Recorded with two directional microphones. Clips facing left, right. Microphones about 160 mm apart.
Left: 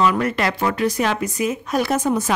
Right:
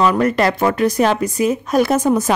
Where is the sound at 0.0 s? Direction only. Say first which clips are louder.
Right 4 dB; 40° right (ahead or behind).